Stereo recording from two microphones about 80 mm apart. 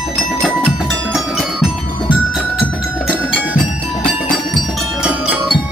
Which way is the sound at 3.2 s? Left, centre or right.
Centre.